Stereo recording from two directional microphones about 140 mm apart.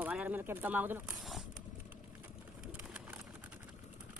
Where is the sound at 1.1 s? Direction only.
Centre (ahead or behind).